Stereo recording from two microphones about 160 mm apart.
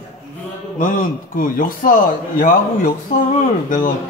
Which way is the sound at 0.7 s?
60° left (ahead or behind).